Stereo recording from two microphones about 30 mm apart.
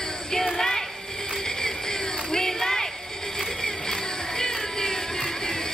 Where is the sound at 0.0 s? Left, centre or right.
Centre.